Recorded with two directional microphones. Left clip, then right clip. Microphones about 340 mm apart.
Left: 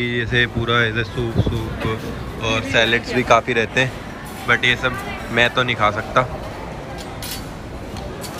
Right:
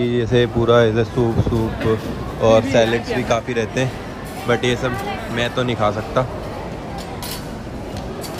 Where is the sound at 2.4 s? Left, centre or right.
Centre.